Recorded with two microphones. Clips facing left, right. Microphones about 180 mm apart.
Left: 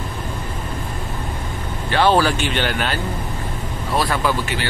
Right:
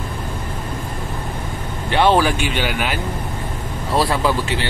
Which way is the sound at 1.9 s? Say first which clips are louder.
Right 1 dB; 20° right (ahead or behind).